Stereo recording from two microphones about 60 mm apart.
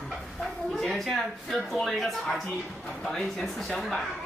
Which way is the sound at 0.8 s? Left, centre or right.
Centre.